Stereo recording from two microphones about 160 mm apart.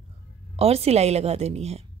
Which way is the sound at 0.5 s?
40° right (ahead or behind).